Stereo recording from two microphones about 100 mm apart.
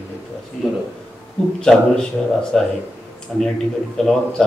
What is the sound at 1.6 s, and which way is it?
A man's voice, 5° left (ahead or behind).